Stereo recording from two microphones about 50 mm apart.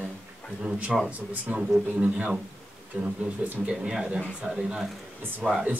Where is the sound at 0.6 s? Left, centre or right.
Right.